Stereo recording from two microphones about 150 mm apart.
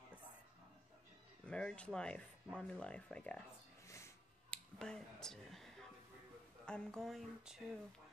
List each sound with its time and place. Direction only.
1.4 s speech: 10° left (ahead or behind)
3.8 s a sound: 20° left (ahead or behind)
4.5 s finger snapping: 5° left (ahead or behind)
6.6 s speech: 5° left (ahead or behind)